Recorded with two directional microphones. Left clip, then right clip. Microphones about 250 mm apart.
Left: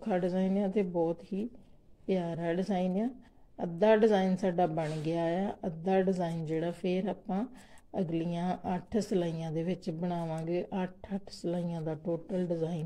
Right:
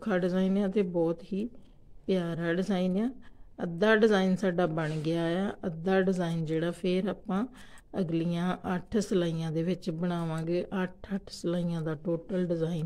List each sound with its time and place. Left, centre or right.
0.0 s speech: centre